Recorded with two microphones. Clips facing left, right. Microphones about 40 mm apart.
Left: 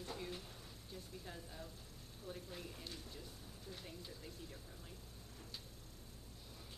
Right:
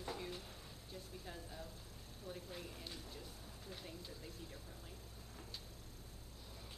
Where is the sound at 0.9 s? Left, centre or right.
Centre.